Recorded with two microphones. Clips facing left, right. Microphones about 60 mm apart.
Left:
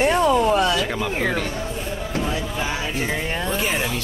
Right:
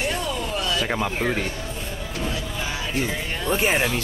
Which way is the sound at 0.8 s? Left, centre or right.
Centre.